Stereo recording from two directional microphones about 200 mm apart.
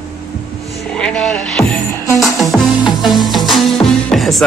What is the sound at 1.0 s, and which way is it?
Music, 5° left (ahead or behind).